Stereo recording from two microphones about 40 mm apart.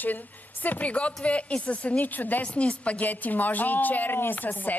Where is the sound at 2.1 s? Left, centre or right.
Left.